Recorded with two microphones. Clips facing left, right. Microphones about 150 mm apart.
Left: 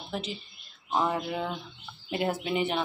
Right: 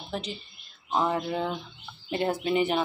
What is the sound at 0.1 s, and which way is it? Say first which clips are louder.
Speech: right 1 dB; centre (ahead or behind).